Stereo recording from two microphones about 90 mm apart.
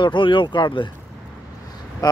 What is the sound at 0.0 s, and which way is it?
Speech, 65° left (ahead or behind).